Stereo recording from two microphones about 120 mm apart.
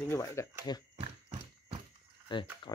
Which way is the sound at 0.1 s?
25° left (ahead or behind).